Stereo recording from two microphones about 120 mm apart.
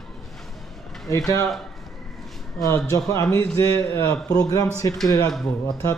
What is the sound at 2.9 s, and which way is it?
Speech, 25° left (ahead or behind).